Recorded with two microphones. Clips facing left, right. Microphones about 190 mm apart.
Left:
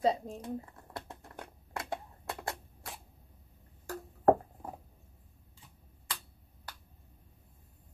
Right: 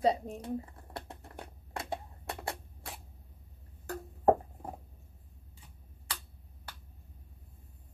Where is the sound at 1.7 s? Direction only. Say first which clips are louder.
Even; 20° right (ahead or behind).